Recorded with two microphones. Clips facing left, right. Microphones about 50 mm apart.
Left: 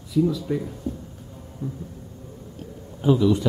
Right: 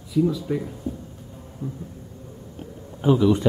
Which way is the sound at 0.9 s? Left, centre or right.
Centre.